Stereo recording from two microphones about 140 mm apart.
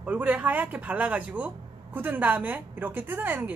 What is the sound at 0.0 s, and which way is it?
A woman's voice, 10° right (ahead or behind).